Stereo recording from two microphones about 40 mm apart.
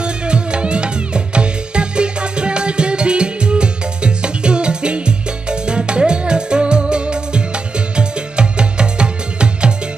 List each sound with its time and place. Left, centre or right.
0.0 s music: right